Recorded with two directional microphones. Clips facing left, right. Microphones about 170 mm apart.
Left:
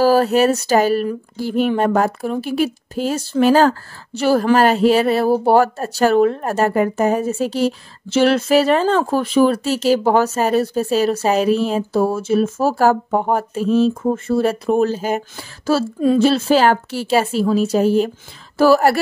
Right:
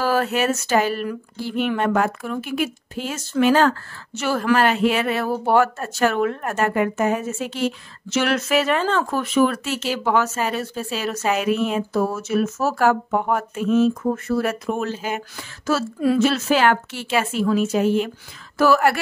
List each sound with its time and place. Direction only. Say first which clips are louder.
0.0 s speech: left 7 dB; 35° left (ahead or behind)
15.3 s speech: left 5 dB; 30° left (ahead or behind)